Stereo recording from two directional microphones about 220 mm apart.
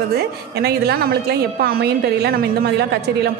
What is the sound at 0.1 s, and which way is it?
A woman's voice, 45° right (ahead or behind).